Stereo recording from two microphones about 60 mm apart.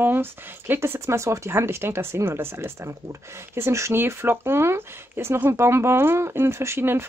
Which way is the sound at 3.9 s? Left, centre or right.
Right.